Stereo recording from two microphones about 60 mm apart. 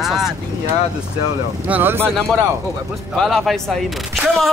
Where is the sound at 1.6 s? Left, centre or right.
Right.